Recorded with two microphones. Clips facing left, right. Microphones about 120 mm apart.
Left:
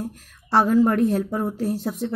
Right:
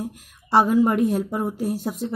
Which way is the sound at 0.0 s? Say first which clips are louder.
Even; 10° right (ahead or behind).